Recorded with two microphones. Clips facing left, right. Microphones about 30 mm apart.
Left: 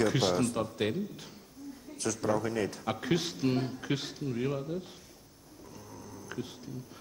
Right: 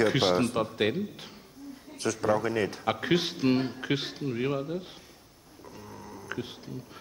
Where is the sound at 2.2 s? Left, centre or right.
Right.